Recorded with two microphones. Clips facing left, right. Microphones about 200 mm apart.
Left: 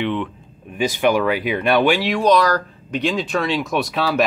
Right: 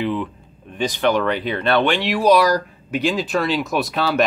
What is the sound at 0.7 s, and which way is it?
Speech, 10° left (ahead or behind).